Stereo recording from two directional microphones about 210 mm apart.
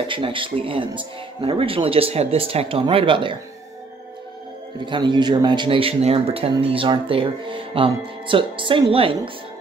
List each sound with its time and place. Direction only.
0.1 s a man's voice: 25° right (ahead or behind)
4.8 s a man's voice: 20° right (ahead or behind)